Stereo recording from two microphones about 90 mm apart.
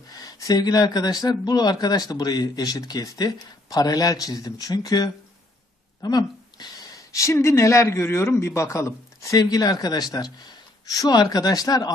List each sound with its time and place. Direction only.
0.1 s speech: 45° left (ahead or behind)